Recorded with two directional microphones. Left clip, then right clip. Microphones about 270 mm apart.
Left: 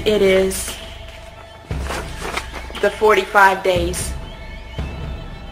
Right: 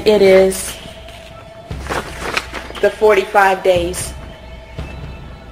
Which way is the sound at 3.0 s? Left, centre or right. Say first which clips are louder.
Right 1 dB; centre.